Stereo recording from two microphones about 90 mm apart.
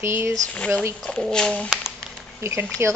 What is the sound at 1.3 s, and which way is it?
Speech, 10° left (ahead or behind).